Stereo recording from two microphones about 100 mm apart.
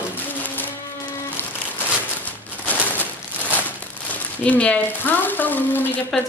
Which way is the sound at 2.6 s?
15° left (ahead or behind).